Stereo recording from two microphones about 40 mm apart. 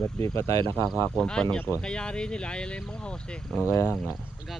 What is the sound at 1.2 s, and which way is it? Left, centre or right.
Speech, left.